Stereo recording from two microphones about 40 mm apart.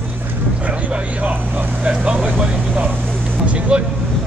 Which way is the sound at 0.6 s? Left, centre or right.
Right.